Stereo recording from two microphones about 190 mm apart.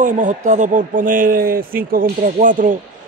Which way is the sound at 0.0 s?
40° right (ahead or behind).